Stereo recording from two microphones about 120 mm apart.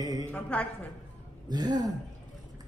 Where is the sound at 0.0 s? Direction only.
30° right (ahead or behind).